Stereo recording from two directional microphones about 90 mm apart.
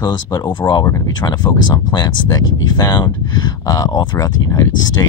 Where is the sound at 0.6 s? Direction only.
55° left (ahead or behind).